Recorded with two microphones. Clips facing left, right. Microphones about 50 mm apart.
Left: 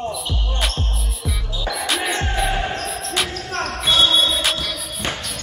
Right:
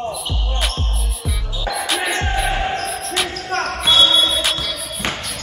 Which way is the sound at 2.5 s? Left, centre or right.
Centre.